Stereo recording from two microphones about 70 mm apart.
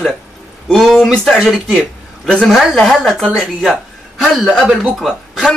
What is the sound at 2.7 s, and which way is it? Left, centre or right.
Speech, centre.